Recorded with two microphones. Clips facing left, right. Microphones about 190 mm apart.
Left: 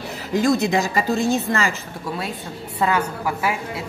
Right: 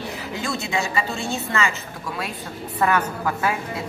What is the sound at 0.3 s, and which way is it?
Speech, 40° left (ahead or behind).